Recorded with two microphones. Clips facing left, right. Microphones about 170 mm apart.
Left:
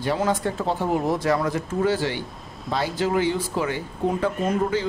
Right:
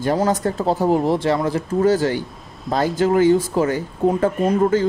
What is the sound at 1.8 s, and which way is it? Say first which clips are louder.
Speech: right 6 dB; 45° right (ahead or behind).